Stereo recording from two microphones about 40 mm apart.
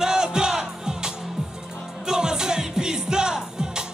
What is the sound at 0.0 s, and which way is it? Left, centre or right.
Music, centre.